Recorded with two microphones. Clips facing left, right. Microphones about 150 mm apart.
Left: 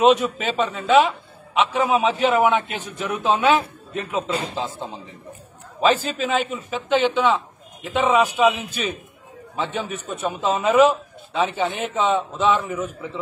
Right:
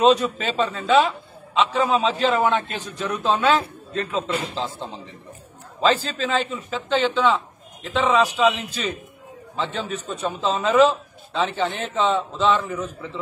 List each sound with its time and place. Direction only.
0.0 s a man's voice: 15° left (ahead or behind)
9.6 s a man's voice: 15° left (ahead or behind)